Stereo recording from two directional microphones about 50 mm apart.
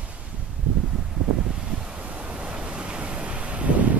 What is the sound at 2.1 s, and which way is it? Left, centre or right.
Waves, right.